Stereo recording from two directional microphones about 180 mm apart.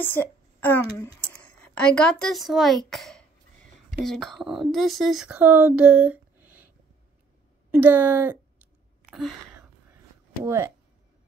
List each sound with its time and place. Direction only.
0.0 s a child's voice: 10° left (ahead or behind); by 6.7 s 10° right (ahead or behind)
7.7 s speech: 10° right (ahead or behind)
9.0 s a sound: centre (ahead or behind)
10.4 s speech: 15° right (ahead or behind)